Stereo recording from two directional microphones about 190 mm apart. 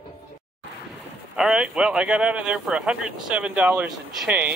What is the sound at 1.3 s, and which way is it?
Speech, 5° right (ahead or behind).